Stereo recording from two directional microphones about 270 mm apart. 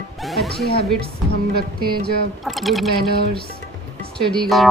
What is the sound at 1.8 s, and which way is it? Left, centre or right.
Speech, right.